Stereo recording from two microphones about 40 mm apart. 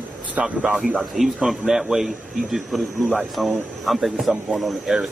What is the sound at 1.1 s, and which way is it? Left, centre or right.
A man's voice, centre.